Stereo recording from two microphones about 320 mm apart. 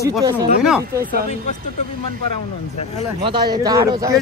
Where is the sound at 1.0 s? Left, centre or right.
Right.